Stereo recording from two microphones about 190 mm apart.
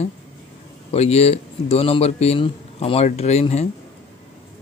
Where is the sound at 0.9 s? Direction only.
35° left (ahead or behind).